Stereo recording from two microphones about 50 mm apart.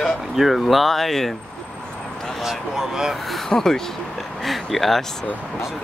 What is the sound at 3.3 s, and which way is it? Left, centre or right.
Speech, centre.